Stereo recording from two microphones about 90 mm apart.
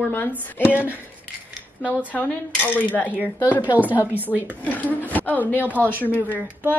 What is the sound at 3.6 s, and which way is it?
Speech, 20° right (ahead or behind).